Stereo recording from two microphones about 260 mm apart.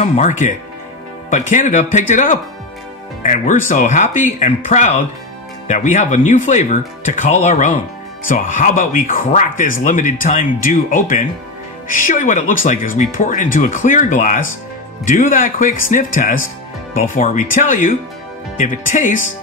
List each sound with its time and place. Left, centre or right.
0.0 s speech: left